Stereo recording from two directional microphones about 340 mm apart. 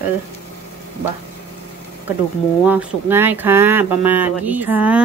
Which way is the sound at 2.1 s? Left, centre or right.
Centre.